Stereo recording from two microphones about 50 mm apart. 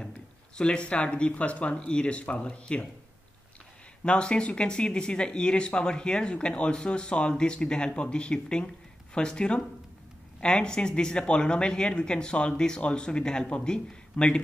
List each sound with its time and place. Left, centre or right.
0.6 s speech: centre
4.0 s speech: centre